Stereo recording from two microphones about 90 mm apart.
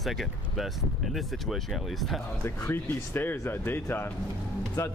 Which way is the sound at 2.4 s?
25° left (ahead or behind).